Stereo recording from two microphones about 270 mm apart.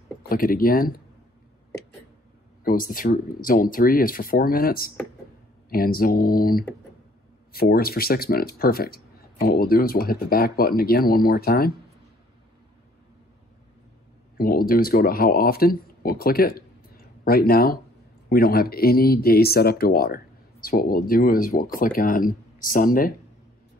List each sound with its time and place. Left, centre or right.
0.3 s speech: left
2.6 s speech: left
14.3 s speech: left